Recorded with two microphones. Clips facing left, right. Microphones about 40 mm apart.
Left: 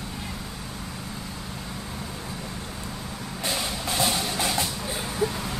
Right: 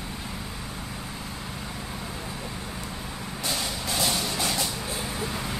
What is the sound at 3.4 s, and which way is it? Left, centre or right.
Music, centre.